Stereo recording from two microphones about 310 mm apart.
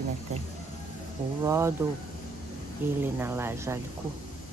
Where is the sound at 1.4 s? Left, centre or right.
Centre.